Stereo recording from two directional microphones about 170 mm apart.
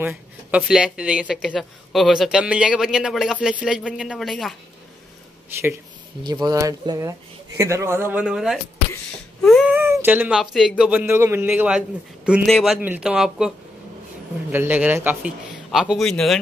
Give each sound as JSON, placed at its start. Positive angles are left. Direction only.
{"t": 0.0, "sound": "speech", "side_deg": -10}
{"t": 6.2, "sound": "speech", "side_deg": -25}
{"t": 9.8, "sound": "speech", "side_deg": -15}
{"t": 12.4, "sound": "speech", "side_deg": 0}
{"t": 14.5, "sound": "speech", "side_deg": -10}